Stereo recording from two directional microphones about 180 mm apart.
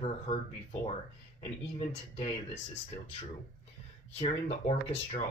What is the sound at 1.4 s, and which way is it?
Speech, 35° left (ahead or behind).